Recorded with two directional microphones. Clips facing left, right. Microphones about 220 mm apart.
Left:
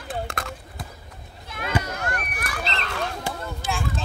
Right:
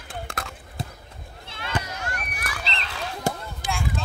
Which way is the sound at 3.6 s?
15° right (ahead or behind).